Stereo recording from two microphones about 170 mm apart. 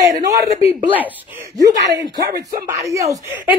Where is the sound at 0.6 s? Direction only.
35° left (ahead or behind).